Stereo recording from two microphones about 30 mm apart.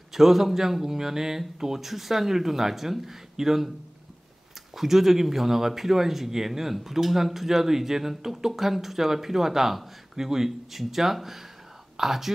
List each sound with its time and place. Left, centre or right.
0.1 s speech: centre
4.7 s speech: centre